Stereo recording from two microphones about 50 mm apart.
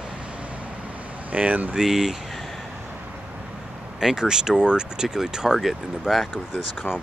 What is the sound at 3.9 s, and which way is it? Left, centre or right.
Speech, centre.